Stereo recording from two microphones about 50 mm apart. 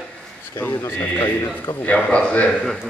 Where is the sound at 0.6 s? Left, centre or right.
Left.